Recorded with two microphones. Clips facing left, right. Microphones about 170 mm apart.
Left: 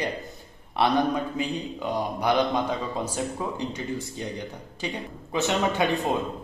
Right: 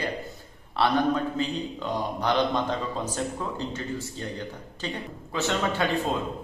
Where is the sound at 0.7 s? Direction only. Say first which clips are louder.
Even; 15° left (ahead or behind).